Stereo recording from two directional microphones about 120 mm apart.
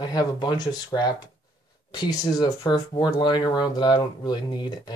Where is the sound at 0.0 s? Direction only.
35° left (ahead or behind).